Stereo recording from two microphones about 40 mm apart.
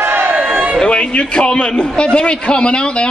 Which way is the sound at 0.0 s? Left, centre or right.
Right.